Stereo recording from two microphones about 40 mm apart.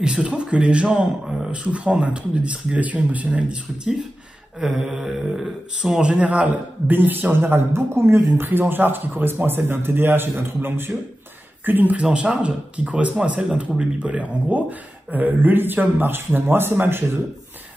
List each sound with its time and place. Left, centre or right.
0.0 s speech: right
4.6 s speech: centre
5.9 s speech: right
6.9 s a man's voice: right
7.5 s speech: right
8.4 s speech: right
11.6 s speech: right
12.0 s speech: right
14.5 s speech: right